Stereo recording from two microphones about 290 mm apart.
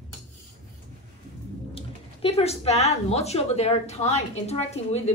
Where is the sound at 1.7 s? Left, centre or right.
Centre.